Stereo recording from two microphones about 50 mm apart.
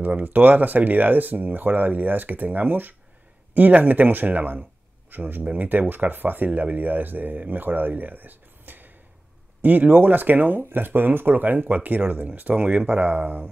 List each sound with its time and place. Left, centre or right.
0.0 s speech: right